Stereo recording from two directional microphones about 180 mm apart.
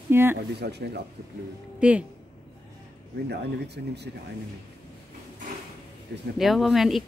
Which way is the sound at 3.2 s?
65° right (ahead or behind).